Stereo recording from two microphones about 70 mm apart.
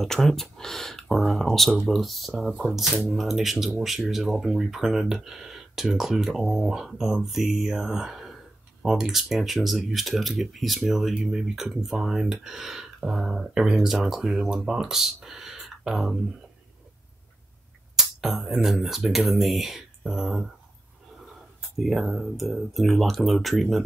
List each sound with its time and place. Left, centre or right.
0.0 s speech: centre
17.9 s speech: centre
21.7 s speech: centre